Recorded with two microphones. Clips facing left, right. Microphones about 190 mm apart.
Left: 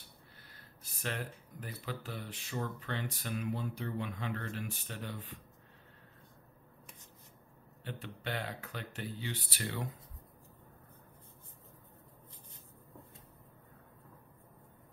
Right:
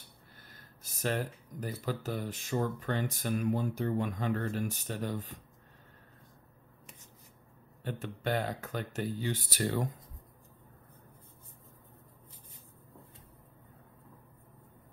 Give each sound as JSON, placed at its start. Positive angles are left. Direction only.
{"t": 0.6, "sound": "speech", "side_deg": -45}
{"t": 7.8, "sound": "speech", "side_deg": -45}